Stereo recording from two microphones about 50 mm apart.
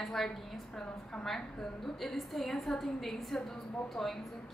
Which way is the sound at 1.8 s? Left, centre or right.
Centre.